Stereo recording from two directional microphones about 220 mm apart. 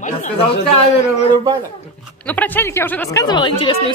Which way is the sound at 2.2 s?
5° left (ahead or behind).